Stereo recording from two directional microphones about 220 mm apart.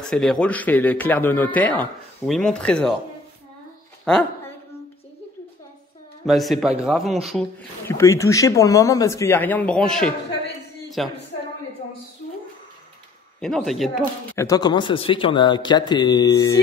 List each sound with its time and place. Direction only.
0.0 s speech: centre (ahead or behind)
4.0 s a woman's voice: 5° left (ahead or behind)
6.2 s speech: centre (ahead or behind)
7.9 s speech: 15° left (ahead or behind)
13.4 s speech: centre (ahead or behind)
14.4 s a man's voice: 15° left (ahead or behind)